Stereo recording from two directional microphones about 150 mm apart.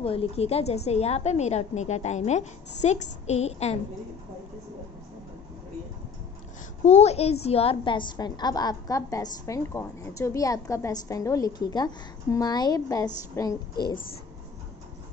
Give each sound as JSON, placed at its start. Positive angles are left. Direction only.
{"t": 0.0, "sound": "a woman's voice", "side_deg": 40}
{"t": 6.8, "sound": "a woman's voice", "side_deg": 45}